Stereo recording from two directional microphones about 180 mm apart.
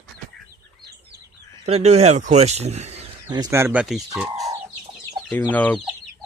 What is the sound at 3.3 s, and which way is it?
Speech, 20° right (ahead or behind).